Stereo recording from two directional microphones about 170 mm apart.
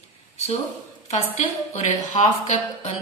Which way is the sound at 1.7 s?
45° left (ahead or behind).